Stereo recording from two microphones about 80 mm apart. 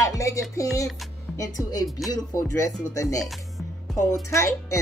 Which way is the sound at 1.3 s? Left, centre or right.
Left.